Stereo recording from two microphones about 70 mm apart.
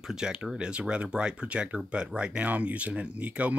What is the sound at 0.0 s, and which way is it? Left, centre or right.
Speech, centre.